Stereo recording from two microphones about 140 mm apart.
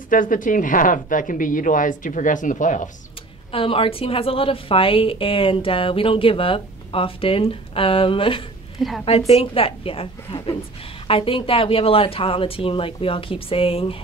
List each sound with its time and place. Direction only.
0.1 s speech: 70° left (ahead or behind)
3.5 s a woman's voice: 40° left (ahead or behind)
8.8 s a woman's voice: centre (ahead or behind)
9.3 s a woman's voice: 40° left (ahead or behind)